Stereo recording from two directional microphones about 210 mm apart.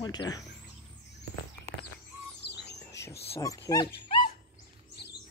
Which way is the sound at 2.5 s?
50° left (ahead or behind).